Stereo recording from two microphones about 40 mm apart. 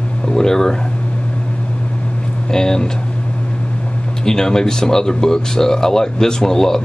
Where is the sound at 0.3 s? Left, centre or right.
Centre.